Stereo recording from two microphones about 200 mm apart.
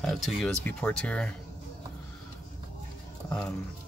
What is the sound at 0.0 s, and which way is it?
Speech, centre (ahead or behind).